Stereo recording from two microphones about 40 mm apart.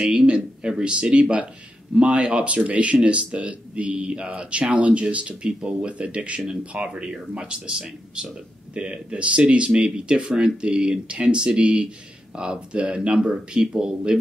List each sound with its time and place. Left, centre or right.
0.3 s speech: right